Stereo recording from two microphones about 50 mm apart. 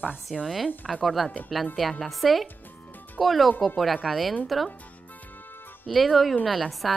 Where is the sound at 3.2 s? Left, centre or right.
Centre.